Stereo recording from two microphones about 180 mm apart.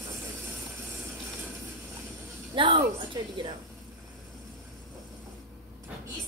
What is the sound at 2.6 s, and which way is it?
Speech, 25° right (ahead or behind).